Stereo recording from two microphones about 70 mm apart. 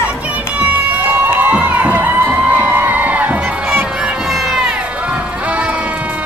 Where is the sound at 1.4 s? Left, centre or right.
Right.